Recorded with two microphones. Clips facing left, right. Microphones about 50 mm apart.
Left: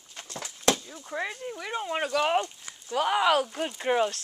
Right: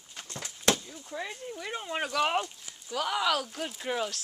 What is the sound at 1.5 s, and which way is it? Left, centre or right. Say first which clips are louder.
Speech: left 2 dB; centre.